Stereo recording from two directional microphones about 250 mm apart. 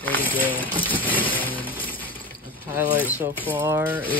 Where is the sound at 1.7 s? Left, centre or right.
Centre.